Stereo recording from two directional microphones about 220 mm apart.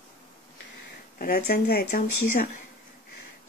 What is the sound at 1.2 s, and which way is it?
Speech, 40° left (ahead or behind).